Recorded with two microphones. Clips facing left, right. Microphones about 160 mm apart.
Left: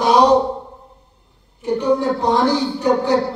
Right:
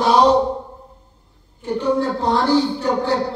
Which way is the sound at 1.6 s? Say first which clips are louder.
Left 2 dB; 15° left (ahead or behind).